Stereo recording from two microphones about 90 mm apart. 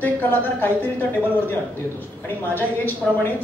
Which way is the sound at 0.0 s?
20° left (ahead or behind).